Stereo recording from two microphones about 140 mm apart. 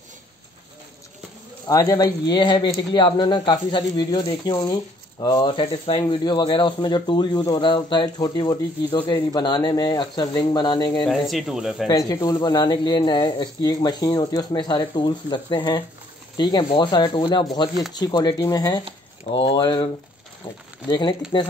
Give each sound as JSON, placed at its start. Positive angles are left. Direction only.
{"t": 1.7, "sound": "speech", "side_deg": 25}
{"t": 11.1, "sound": "speech", "side_deg": 0}
{"t": 11.9, "sound": "speech", "side_deg": 25}